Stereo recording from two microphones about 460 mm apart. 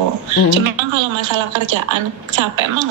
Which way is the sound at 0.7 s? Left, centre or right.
Right.